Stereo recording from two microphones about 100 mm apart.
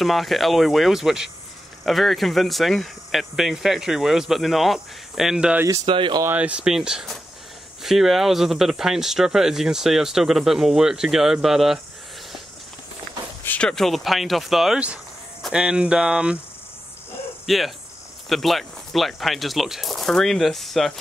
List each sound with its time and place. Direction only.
0.0 s speech: centre (ahead or behind)
5.9 s speech: 55° right (ahead or behind)
6.3 s speech: 10° right (ahead or behind)
13.4 s a sound: 20° left (ahead or behind)
13.7 s speech: 5° left (ahead or behind)
17.5 s speech: centre (ahead or behind)